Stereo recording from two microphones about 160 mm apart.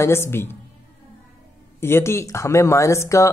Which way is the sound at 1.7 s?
15° left (ahead or behind).